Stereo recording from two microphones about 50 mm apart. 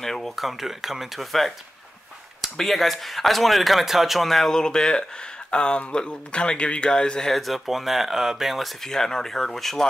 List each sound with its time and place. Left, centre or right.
0.0 s speech: centre
7.3 s speech: centre
8.8 s speech: centre